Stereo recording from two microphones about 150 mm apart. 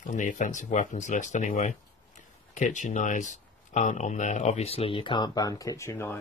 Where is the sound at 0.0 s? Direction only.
55° left (ahead or behind).